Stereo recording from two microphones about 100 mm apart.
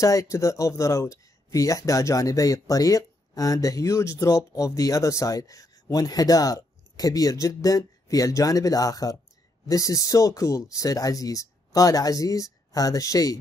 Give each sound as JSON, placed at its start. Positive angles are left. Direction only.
{"t": 0.0, "sound": "speech", "side_deg": 35}